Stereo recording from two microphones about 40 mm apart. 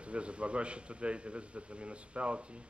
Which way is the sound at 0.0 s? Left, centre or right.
Right.